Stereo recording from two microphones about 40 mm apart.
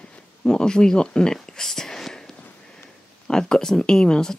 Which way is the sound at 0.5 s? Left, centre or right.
Centre.